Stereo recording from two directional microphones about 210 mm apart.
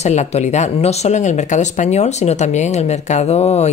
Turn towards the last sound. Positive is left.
turn(degrees=30)  # may be behind; listen again after turning